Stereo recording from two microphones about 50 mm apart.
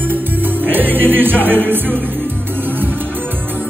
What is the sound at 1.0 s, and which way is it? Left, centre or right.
Music, right.